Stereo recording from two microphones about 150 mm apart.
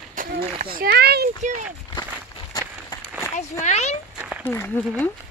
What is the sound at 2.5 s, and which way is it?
Run, 25° left (ahead or behind).